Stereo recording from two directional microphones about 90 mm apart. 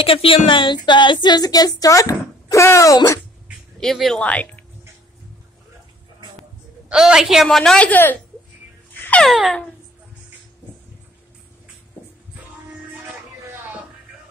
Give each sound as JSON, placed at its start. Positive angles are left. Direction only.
{"t": 0.0, "sound": "a woman's voice", "side_deg": 85}
{"t": 3.8, "sound": "speech", "side_deg": 5}
{"t": 4.2, "sound": "a woman's voice", "side_deg": 15}
{"t": 6.9, "sound": "a woman's voice", "side_deg": -10}
{"t": 7.4, "sound": "a woman's voice", "side_deg": 5}
{"t": 7.9, "sound": "speech", "side_deg": 20}
{"t": 9.2, "sound": "speech", "side_deg": 0}